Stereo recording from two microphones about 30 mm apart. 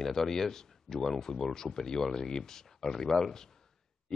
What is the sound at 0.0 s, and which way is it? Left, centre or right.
Speech, centre.